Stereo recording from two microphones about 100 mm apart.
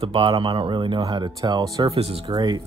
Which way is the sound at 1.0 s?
40° right (ahead or behind).